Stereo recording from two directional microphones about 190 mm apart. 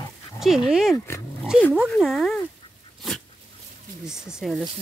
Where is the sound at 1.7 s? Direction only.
5° right (ahead or behind).